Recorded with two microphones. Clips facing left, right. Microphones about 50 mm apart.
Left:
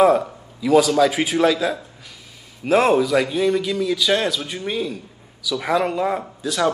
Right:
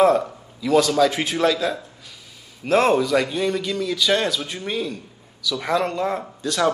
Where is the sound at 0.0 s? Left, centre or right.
Centre.